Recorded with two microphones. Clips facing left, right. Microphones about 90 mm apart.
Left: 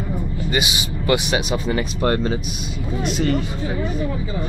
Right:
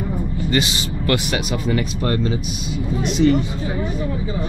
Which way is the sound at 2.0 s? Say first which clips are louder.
Left 4 dB; 40° left (ahead or behind).